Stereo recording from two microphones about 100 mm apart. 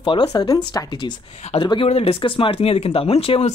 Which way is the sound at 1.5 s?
90° left.